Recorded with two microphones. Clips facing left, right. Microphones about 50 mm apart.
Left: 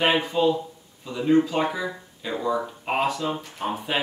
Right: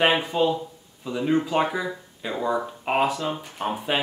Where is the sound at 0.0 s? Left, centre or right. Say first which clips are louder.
Even; centre.